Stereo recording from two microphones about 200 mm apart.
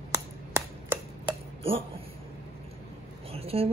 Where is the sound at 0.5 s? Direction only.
15° right (ahead or behind).